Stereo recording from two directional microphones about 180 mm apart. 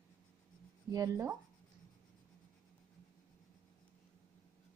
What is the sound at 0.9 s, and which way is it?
Speech, 20° right (ahead or behind).